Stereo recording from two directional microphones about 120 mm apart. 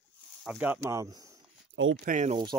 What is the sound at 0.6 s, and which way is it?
Speech, 15° right (ahead or behind).